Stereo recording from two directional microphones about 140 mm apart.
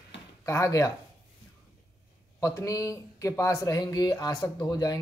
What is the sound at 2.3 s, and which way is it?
Speech, 25° left (ahead or behind).